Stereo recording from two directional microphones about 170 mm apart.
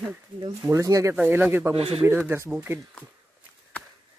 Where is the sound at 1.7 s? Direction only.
35° right (ahead or behind).